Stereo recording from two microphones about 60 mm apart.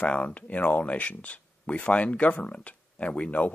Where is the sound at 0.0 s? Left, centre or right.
Left.